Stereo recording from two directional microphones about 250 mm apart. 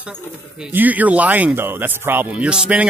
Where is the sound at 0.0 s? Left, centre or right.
Centre.